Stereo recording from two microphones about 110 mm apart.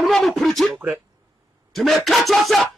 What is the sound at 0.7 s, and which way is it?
Speech, 20° right (ahead or behind).